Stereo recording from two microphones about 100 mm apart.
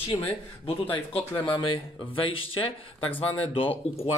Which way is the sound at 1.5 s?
55° left (ahead or behind).